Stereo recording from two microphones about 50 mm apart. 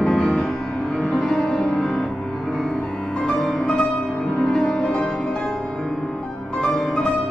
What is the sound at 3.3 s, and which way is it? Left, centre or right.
Music, centre.